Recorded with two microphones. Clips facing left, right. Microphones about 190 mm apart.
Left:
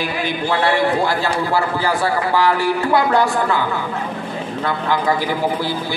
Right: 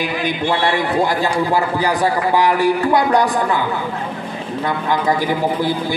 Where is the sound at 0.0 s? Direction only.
15° right (ahead or behind).